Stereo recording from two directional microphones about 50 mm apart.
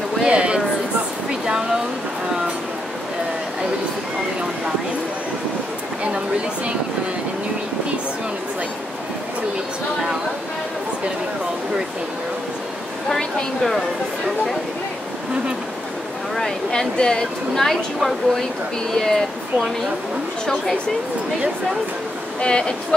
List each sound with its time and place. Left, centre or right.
0.2 s a sound: centre
13.6 s a woman's voice: centre
16.3 s speech: centre
17.6 s a woman's voice: centre
22.4 s speech: centre